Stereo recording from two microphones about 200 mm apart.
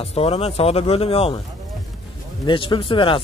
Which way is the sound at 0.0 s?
30° left (ahead or behind).